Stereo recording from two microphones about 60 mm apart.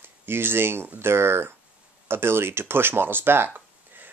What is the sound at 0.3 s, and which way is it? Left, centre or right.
Speech, right.